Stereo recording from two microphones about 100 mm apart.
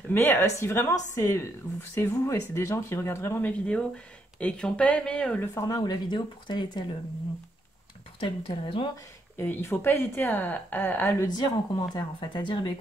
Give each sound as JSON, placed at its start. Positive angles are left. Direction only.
{"t": 0.1, "sound": "speech", "side_deg": 20}
{"t": 5.5, "sound": "speech", "side_deg": 35}
{"t": 8.2, "sound": "speech", "side_deg": 60}
{"t": 9.4, "sound": "speech", "side_deg": 25}
{"t": 11.2, "sound": "speech", "side_deg": 45}